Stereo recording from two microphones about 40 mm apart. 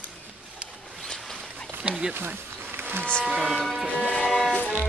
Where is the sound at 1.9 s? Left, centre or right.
Right.